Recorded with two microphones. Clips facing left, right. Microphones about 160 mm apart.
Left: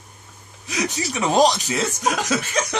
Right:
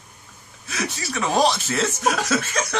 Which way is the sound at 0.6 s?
15° left (ahead or behind).